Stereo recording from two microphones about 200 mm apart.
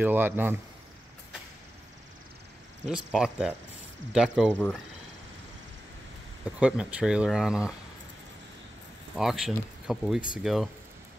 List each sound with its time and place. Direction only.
0.0 s speech: 10° right (ahead or behind)
2.9 s speech: 5° right (ahead or behind)
6.6 s speech: 5° right (ahead or behind)
9.1 s speech: centre (ahead or behind)